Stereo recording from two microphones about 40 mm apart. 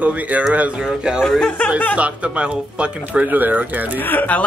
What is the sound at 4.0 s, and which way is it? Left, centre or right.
Speech, left.